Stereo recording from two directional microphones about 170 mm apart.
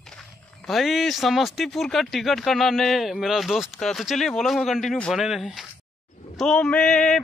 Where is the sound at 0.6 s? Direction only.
Centre (ahead or behind).